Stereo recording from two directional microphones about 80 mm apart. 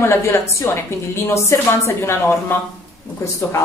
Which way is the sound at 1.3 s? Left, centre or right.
Left.